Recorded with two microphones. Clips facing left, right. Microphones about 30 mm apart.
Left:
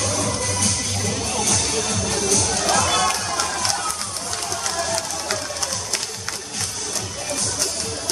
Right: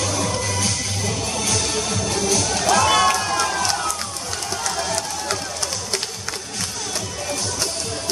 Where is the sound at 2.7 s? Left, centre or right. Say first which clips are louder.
Right 5 dB; right.